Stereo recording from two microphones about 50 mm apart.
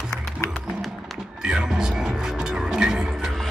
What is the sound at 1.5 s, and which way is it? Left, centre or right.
Music, centre.